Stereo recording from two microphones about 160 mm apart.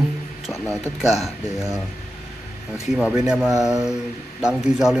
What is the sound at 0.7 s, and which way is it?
Speech, 15° left (ahead or behind).